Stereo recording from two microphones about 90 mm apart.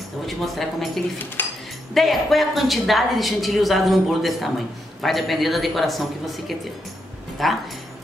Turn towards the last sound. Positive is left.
turn(degrees=0)  # may be behind; listen again after turning